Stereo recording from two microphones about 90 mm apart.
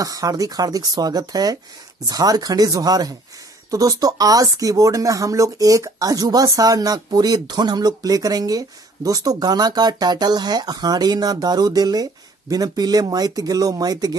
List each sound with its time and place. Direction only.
0.0 s speech: 40° right (ahead or behind)